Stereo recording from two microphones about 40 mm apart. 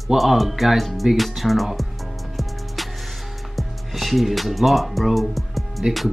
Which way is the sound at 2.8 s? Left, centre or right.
Centre.